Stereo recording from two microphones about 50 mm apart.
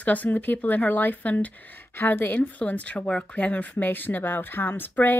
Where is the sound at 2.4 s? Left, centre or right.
Left.